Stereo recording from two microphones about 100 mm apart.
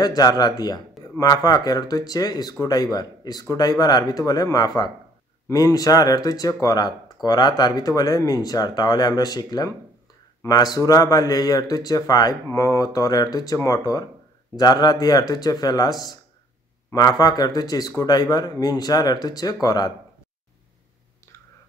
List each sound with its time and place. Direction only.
0.0 s speech: 40° left (ahead or behind)